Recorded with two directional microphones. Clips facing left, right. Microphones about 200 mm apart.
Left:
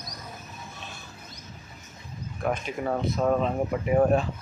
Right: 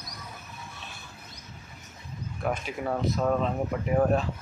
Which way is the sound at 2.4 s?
5° right (ahead or behind).